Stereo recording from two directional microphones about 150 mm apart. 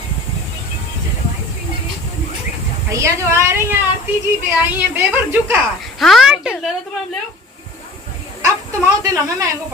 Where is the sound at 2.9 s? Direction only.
20° right (ahead or behind).